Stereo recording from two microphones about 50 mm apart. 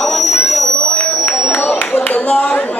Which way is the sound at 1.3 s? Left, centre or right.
Left.